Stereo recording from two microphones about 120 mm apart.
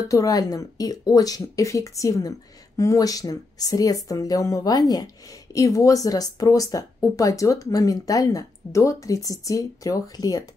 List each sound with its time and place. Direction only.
0.0 s speech: 30° left (ahead or behind)